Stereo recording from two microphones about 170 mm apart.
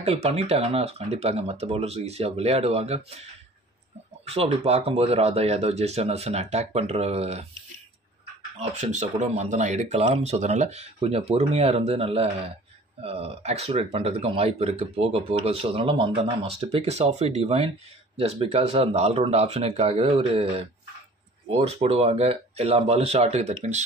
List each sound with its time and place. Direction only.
0.0 s speech: 35° right (ahead or behind)
4.3 s speech: 40° right (ahead or behind)
8.5 s speech: 40° right (ahead or behind)